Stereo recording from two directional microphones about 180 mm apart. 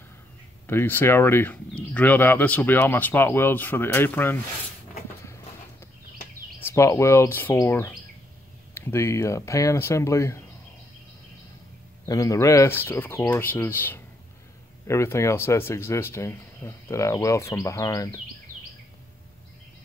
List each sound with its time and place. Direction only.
0.7 s speech: 10° left (ahead or behind)
6.6 s speech: 15° left (ahead or behind)
12.1 s speech: 20° left (ahead or behind)